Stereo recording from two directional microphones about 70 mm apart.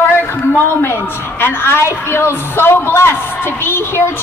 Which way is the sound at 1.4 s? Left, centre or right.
Left.